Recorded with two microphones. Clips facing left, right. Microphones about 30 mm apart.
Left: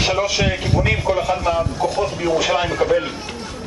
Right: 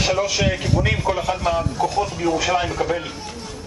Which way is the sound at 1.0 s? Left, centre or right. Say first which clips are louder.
Left 2 dB; centre.